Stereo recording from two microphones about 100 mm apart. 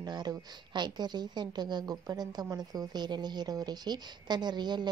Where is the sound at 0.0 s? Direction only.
40° right (ahead or behind).